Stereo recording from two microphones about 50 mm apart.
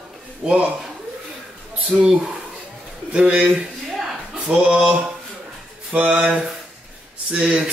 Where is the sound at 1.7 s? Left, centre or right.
Right.